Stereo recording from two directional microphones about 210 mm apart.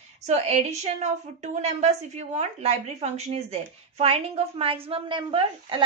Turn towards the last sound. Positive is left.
turn(degrees=-25)  # may be behind; listen again after turning